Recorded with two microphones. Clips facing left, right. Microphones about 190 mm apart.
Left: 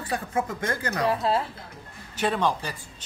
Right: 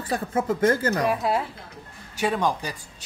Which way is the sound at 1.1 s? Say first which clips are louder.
Even; 15° right (ahead or behind).